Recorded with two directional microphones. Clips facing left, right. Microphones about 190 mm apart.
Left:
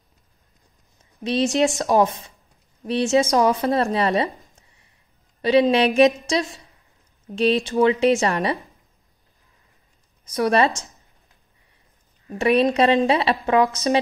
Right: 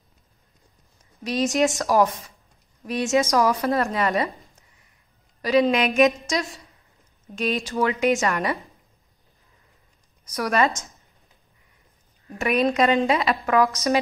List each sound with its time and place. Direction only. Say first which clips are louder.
1.2 s speech: left 2 dB; 25° left (ahead or behind)
5.4 s speech: left 3 dB; 25° left (ahead or behind)
10.3 s speech: left 3 dB; 30° left (ahead or behind)
12.4 s a woman's voice: left 3 dB; 30° left (ahead or behind)